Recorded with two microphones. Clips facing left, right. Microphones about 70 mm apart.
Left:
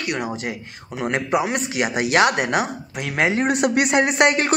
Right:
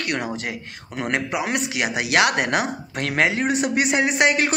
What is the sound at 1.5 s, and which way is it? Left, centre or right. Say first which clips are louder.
A man's voice: left 1 dB; left.